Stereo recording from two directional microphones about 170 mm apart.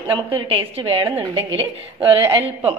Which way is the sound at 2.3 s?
35° right (ahead or behind).